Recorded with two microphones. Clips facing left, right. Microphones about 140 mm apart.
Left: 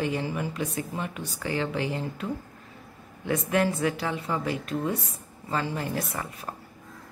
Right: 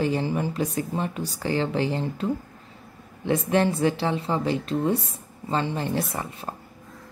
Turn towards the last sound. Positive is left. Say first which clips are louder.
# right 3 dB
turn(degrees=-30)  # may be behind; listen again after turning